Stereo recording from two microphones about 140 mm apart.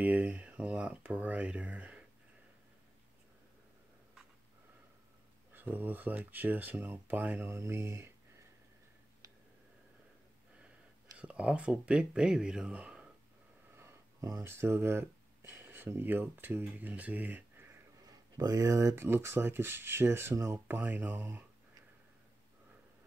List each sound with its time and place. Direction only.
0.0 s speech: 10° right (ahead or behind)
5.5 s speech: 15° right (ahead or behind)
11.1 s speech: 10° right (ahead or behind)
13.7 s speech: 20° right (ahead or behind)
18.0 s speech: 25° right (ahead or behind)